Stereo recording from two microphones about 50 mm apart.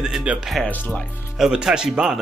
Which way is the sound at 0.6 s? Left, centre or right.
Left.